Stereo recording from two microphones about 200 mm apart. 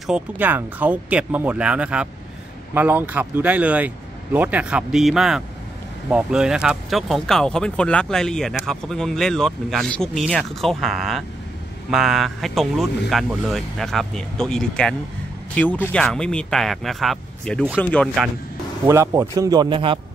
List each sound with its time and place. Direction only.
0.0 s speech: 5° right (ahead or behind)
18.9 s a man's voice: 15° right (ahead or behind)